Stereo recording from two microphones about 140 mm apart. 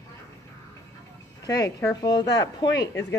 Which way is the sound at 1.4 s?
25° left (ahead or behind).